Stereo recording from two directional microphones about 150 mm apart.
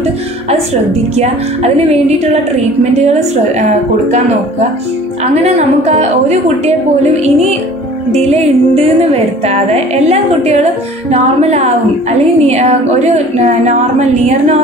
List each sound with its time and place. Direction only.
1.1 s a woman's voice: 45° right (ahead or behind)
5.3 s a woman's voice: 45° right (ahead or behind)
8.1 s a woman's voice: 45° right (ahead or behind)